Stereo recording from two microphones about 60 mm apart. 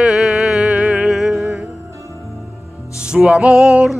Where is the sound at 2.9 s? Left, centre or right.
Centre.